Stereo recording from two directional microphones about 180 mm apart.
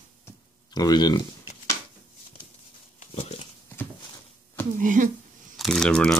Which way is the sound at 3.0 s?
35° left (ahead or behind).